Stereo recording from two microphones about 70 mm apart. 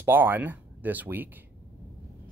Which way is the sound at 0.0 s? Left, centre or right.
Right.